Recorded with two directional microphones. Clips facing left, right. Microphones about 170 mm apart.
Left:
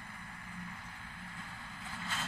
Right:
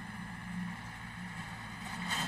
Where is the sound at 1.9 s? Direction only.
20° right (ahead or behind).